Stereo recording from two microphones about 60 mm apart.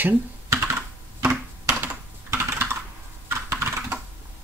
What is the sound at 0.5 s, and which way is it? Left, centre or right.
Computer keyboard, right.